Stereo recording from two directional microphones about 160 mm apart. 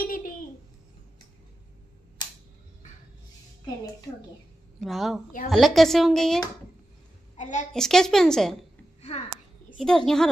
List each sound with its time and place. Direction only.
0.0 s a sound: 60° left (ahead or behind)
4.7 s a woman's voice: centre (ahead or behind)
7.3 s a woman's voice: 50° left (ahead or behind)
7.7 s a woman's voice: 5° left (ahead or behind)
9.8 s a woman's voice: 5° left (ahead or behind)